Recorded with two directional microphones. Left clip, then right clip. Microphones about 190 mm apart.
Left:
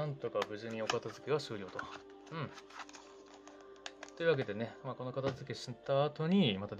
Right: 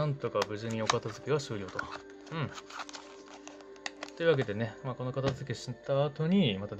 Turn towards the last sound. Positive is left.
turn(degrees=5)  # may be behind; listen again after turning